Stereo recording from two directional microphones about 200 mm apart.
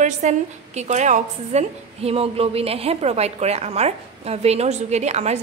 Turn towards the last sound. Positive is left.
turn(degrees=-35)  # may be behind; listen again after turning